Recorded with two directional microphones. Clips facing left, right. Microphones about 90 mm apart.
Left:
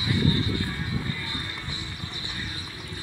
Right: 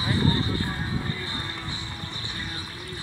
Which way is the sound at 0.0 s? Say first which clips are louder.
Right 1 dB; 35° right (ahead or behind).